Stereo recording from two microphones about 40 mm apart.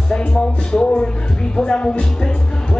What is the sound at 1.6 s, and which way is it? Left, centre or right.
Speech, left.